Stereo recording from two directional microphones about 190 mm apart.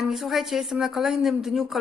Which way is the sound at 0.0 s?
Centre (ahead or behind).